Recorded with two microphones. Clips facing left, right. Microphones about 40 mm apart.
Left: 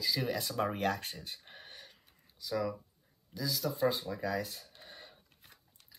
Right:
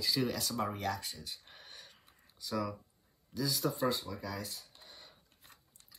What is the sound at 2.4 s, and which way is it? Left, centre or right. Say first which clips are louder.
Speech: left 2 dB; centre.